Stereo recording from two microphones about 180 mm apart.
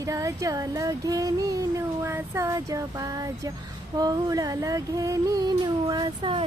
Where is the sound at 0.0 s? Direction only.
20° right (ahead or behind).